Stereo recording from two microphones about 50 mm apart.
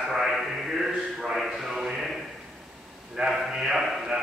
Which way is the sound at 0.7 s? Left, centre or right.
Centre.